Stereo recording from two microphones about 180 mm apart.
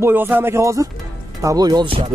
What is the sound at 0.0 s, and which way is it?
Speech, 10° right (ahead or behind).